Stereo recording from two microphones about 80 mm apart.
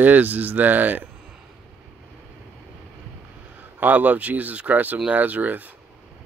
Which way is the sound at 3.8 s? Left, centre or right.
Centre.